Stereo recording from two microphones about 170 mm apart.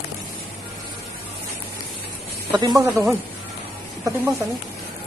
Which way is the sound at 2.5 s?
25° right (ahead or behind).